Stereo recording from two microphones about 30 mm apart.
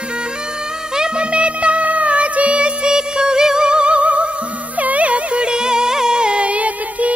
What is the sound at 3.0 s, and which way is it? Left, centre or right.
Music, right.